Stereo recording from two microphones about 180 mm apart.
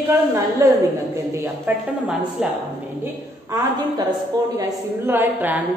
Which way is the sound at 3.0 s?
20° right (ahead or behind).